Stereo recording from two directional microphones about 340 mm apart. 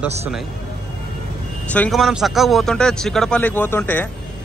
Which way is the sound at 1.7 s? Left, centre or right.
Centre.